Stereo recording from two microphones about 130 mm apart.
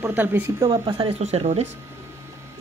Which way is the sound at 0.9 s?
50° right (ahead or behind).